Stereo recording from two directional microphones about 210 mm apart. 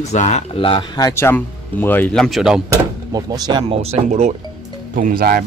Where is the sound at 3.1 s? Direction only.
20° right (ahead or behind).